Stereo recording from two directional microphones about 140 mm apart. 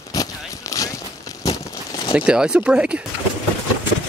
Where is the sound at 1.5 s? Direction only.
25° left (ahead or behind).